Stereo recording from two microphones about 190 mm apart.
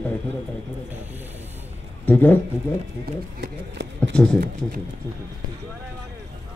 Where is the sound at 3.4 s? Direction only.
65° right (ahead or behind).